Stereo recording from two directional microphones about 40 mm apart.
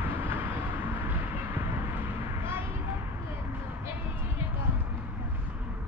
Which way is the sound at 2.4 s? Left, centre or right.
Right.